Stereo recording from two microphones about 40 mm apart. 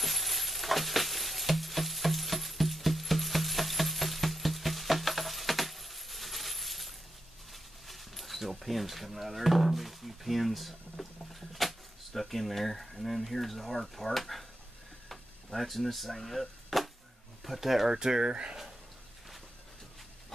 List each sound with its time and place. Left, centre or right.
0.0 s music: centre
7.5 s speech: centre
15.0 s chop: centre
17.4 s speech: centre
18.3 s speech: right